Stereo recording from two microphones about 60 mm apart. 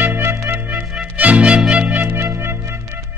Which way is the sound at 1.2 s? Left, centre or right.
Right.